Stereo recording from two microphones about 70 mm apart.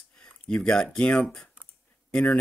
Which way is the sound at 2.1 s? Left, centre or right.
Centre.